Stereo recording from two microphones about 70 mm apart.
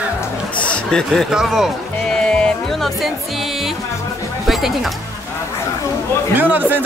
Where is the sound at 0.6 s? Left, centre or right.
Centre.